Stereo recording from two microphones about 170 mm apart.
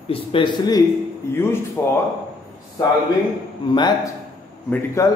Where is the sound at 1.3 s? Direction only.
15° left (ahead or behind).